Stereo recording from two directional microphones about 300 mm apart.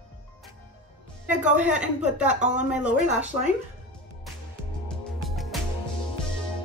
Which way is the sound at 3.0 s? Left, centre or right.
Right.